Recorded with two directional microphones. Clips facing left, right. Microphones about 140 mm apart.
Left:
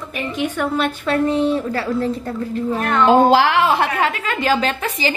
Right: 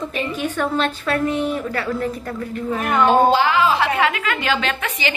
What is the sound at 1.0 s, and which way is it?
A woman's voice, 25° left (ahead or behind).